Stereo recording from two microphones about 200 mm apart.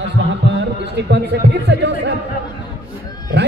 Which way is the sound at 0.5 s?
60° right (ahead or behind).